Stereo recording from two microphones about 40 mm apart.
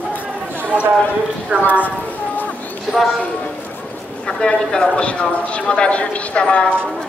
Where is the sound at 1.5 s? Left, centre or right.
Right.